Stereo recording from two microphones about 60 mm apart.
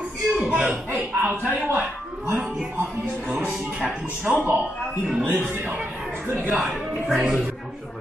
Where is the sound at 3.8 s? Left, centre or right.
Right.